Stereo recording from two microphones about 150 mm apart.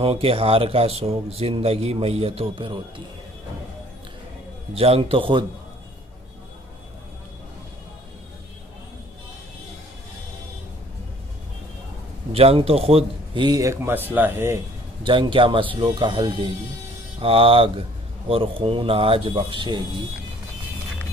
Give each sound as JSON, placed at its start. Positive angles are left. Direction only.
{"t": 0.0, "sound": "speech", "side_deg": -40}
{"t": 4.7, "sound": "speech", "side_deg": -40}
{"t": 12.3, "sound": "a man's voice", "side_deg": -40}
{"t": 15.0, "sound": "speech", "side_deg": -35}